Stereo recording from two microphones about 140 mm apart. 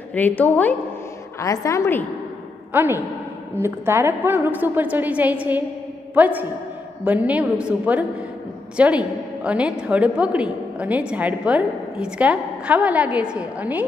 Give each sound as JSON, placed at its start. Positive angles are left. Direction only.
{"t": 0.1, "sound": "a woman's voice", "side_deg": 10}
{"t": 1.4, "sound": "a woman's voice", "side_deg": 25}
{"t": 2.7, "sound": "a woman's voice", "side_deg": -15}